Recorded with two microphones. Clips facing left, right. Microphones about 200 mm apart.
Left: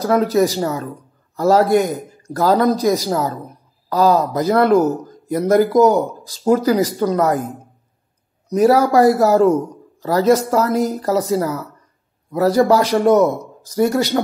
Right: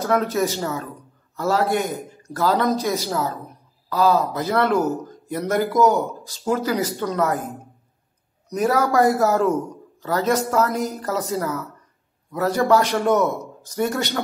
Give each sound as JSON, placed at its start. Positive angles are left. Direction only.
{"t": 0.0, "sound": "a man's voice", "side_deg": 35}
{"t": 4.7, "sound": "speech", "side_deg": 15}
{"t": 5.0, "sound": "a man's voice", "side_deg": 35}
{"t": 8.5, "sound": "a man's voice", "side_deg": 35}